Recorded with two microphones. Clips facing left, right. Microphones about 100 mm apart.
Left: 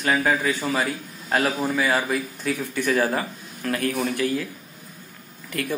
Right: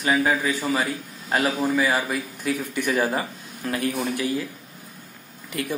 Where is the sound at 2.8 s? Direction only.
15° right (ahead or behind).